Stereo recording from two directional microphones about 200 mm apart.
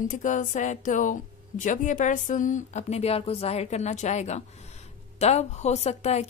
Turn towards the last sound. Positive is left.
turn(degrees=35)  # may be behind; listen again after turning